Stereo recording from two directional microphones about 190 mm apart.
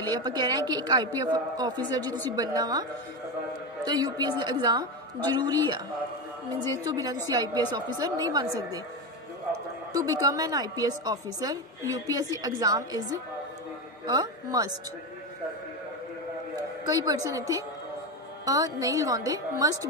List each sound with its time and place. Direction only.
0.2 s a woman's voice: 20° right (ahead or behind)
9.9 s a woman's voice: 20° right (ahead or behind)
14.0 s a woman's voice: 20° right (ahead or behind)
16.8 s a woman's voice: 20° right (ahead or behind)